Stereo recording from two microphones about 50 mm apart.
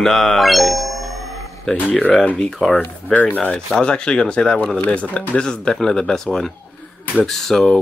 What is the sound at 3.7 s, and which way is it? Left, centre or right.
Speech, centre.